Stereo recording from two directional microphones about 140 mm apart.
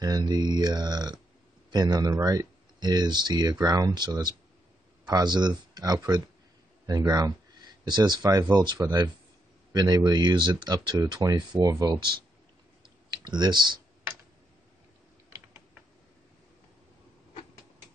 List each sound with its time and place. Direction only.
0.0 s speech: 30° right (ahead or behind)
12.8 s computer keyboard: 30° right (ahead or behind)